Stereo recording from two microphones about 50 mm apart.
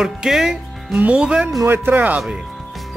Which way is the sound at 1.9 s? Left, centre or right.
Right.